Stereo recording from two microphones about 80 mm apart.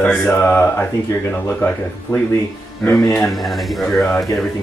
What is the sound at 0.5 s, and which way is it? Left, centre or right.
Speech, left.